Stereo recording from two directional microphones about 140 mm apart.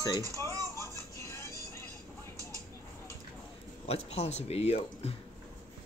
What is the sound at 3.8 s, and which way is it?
Speech, 45° left (ahead or behind).